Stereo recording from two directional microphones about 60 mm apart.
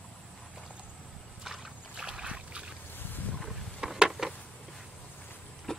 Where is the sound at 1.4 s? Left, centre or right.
Centre.